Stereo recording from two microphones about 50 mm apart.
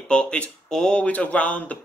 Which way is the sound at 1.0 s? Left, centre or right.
Left.